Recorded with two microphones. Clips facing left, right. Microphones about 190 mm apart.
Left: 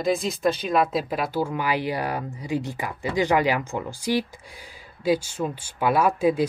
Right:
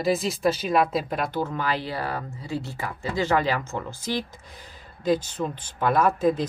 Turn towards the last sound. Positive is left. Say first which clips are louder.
# left 1 dB
turn(degrees=10)  # may be behind; listen again after turning